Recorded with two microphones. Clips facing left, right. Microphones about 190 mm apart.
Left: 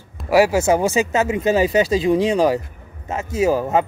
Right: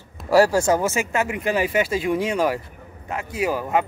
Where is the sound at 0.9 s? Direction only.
25° left (ahead or behind).